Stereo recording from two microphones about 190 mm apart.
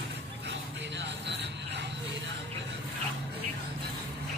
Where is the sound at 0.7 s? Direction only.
70° right (ahead or behind).